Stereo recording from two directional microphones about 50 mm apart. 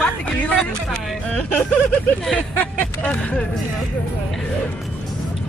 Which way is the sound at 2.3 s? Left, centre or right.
Left.